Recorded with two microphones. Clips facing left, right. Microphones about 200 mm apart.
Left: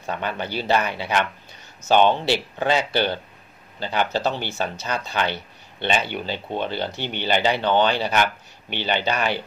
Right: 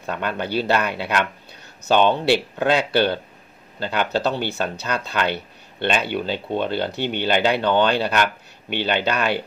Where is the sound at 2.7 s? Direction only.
60° right (ahead or behind).